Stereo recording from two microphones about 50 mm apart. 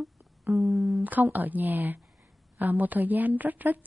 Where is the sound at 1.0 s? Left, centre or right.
Right.